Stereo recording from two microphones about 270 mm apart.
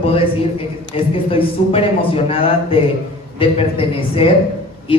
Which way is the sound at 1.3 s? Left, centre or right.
Left.